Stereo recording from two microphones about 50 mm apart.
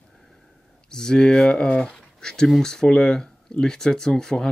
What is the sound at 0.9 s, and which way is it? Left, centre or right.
Speech, centre.